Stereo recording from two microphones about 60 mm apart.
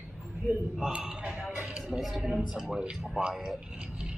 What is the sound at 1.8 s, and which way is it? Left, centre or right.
A man's voice, centre.